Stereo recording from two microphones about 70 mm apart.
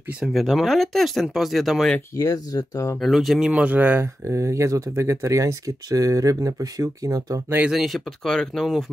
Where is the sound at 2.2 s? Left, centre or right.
Left.